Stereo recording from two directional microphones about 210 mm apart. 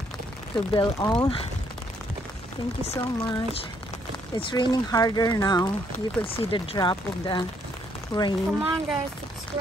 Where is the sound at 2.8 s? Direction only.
15° left (ahead or behind).